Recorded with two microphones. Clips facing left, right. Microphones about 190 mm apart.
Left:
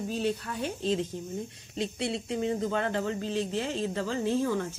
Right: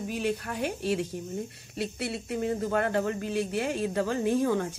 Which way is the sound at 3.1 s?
15° right (ahead or behind).